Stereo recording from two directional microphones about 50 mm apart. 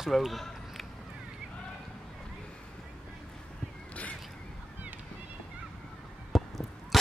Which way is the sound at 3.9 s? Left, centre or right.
Left.